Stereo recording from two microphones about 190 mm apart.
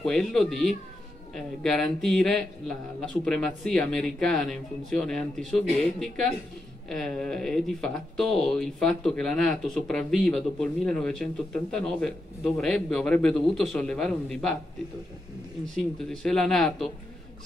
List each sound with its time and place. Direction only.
0.0 s speech: 5° left (ahead or behind)
16.1 s speech: 5° left (ahead or behind)